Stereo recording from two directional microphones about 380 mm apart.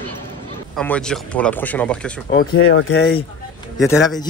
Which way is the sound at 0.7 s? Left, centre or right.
Centre.